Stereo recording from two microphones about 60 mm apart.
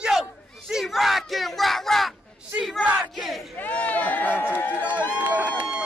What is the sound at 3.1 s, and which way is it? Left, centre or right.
Battle cry, centre.